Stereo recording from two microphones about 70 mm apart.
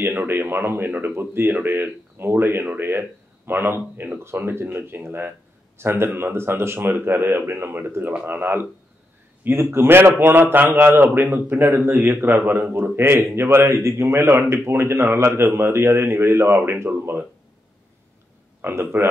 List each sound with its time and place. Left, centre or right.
0.0 s speech: right
18.6 s speech: right